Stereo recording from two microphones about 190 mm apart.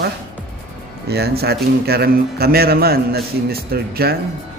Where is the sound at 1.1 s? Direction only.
55° right (ahead or behind).